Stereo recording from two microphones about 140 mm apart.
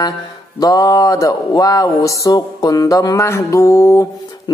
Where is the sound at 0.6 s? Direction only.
25° left (ahead or behind).